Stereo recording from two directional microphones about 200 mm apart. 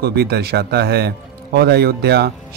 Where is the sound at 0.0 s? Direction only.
50° right (ahead or behind).